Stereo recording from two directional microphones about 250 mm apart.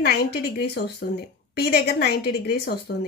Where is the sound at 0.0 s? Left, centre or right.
Left.